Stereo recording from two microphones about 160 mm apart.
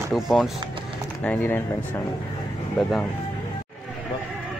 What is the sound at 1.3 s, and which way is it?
Speech, 15° left (ahead or behind).